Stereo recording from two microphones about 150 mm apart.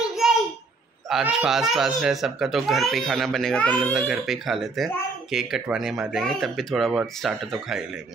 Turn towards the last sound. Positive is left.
turn(degrees=0)  # may be behind; listen again after turning